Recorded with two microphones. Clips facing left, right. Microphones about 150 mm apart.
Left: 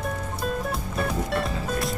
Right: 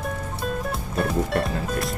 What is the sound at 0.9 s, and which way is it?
Music, centre (ahead or behind).